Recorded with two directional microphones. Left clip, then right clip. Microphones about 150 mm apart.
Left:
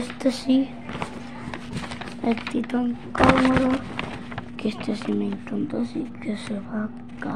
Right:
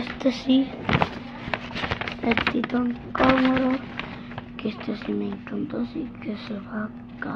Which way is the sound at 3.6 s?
40° left (ahead or behind).